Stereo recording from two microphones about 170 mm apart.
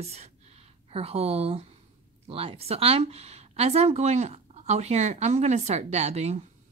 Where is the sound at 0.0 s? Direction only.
40° right (ahead or behind).